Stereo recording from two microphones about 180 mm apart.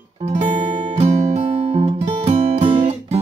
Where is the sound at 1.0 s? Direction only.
35° right (ahead or behind).